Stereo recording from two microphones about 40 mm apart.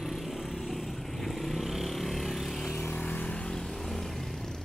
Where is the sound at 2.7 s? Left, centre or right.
Left.